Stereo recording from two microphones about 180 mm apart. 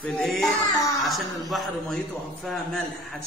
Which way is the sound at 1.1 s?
Centre (ahead or behind).